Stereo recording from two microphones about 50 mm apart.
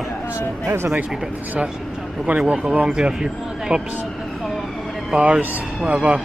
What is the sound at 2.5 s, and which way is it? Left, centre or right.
Speech, right.